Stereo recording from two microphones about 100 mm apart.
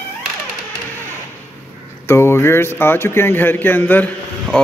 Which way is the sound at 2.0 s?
25° left (ahead or behind).